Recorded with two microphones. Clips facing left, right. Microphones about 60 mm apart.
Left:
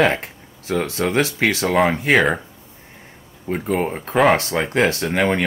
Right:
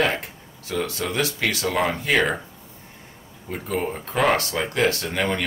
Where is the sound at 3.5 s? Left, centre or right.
Left.